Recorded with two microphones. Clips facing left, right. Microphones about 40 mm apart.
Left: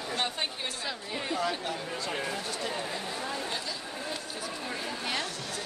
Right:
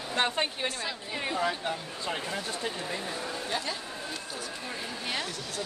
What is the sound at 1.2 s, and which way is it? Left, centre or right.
Speech, centre.